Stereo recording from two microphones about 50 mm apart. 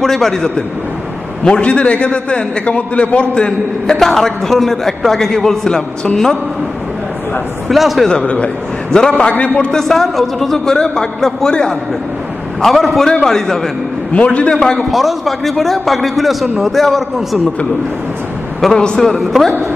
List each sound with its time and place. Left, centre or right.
0.0 s a man's voice: centre
1.4 s a man's voice: centre
7.6 s a man's voice: centre
8.1 s a man's voice: left
9.6 s a man's voice: centre
12.6 s a man's voice: centre
14.1 s a man's voice: left
14.5 s a man's voice: centre
14.9 s a man's voice: centre
18.6 s a man's voice: centre
18.9 s a man's voice: centre